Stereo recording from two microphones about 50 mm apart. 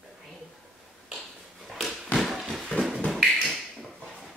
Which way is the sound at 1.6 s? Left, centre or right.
Centre.